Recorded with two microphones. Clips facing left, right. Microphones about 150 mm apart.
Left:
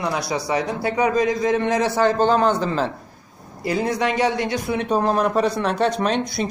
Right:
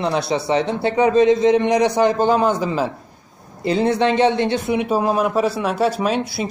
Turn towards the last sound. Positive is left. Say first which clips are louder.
# right 1 dB
turn(degrees=-5)  # may be behind; listen again after turning